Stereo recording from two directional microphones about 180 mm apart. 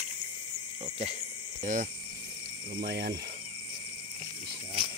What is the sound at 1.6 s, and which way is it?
Speech, 45° right (ahead or behind).